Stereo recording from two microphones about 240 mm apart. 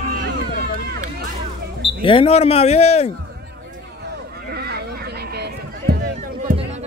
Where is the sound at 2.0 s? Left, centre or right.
Left.